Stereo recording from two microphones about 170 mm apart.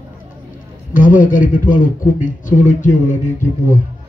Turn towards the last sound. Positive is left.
turn(degrees=50)  # may be behind; listen again after turning